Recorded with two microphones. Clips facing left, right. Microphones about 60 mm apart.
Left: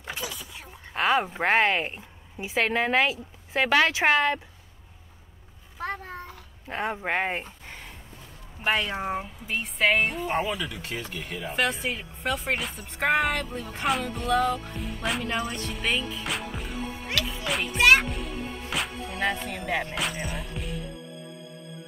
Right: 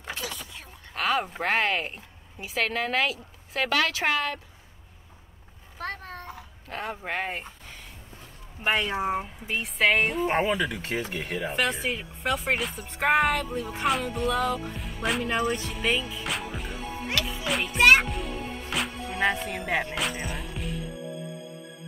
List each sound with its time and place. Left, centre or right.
0.0 s a sound: centre
0.9 s a woman's voice: left
5.8 s a child's voice: centre
6.7 s a woman's voice: left
8.6 s speech: centre
10.4 s speech: right
11.5 s speech: centre
20.0 s music: centre